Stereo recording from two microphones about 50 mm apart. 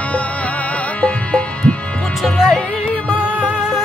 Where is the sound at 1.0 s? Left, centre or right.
Left.